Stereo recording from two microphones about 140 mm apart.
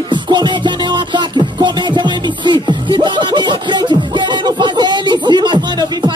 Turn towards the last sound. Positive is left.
turn(degrees=-35)  # may be behind; listen again after turning